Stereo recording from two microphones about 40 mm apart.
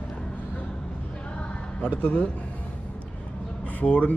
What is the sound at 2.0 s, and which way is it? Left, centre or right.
Speech, left.